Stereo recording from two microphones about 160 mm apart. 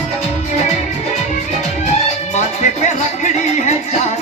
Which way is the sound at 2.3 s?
50° left (ahead or behind).